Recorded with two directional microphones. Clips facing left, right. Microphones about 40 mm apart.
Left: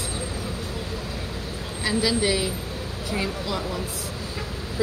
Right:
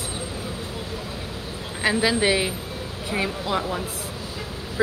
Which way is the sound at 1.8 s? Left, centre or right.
Right.